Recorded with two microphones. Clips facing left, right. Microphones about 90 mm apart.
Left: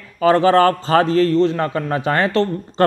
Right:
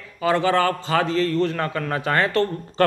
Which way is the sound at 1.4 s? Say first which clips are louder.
Left 5 dB; 25° left (ahead or behind).